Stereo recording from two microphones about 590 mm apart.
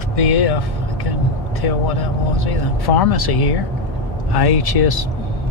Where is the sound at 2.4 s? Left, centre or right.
Left.